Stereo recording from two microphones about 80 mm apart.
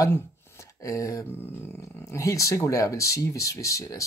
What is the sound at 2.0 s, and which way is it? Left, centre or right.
Speech, left.